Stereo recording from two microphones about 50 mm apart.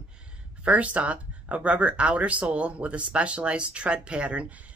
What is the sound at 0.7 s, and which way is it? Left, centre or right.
Speech, right.